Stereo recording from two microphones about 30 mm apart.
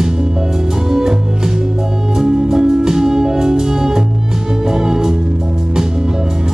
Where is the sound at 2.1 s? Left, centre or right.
Right.